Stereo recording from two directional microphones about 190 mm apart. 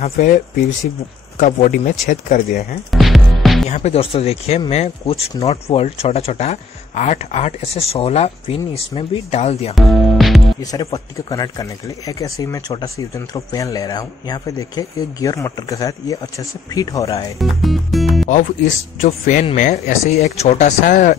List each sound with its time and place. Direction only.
0.0 s speech: 45° left (ahead or behind)
1.4 s speech: 45° left (ahead or behind)
2.9 s music: centre (ahead or behind)
3.7 s speech: 35° left (ahead or behind)
9.8 s speech: centre (ahead or behind)
10.6 s speech: 20° left (ahead or behind)
17.4 s speech: centre (ahead or behind)
18.9 s speech: 40° left (ahead or behind)